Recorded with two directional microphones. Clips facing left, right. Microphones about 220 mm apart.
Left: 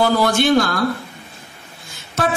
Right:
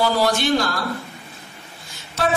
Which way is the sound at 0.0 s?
55° left (ahead or behind).